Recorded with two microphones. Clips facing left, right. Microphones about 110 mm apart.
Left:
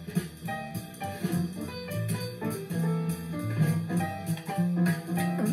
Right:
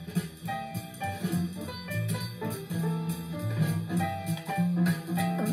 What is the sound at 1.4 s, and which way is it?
Music, 25° left (ahead or behind).